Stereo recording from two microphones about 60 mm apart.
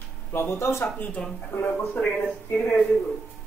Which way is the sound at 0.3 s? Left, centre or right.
Left.